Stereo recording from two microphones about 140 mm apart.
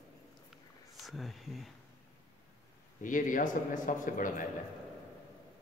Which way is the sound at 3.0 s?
70° left (ahead or behind).